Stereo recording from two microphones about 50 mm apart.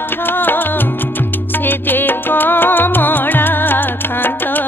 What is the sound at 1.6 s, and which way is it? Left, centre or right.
Music, left.